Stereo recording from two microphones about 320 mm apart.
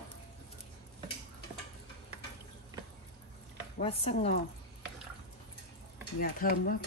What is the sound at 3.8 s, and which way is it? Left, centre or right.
Speech, centre.